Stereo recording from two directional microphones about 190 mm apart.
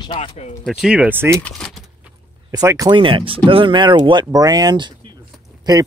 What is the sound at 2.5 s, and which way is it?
Speech, 15° right (ahead or behind).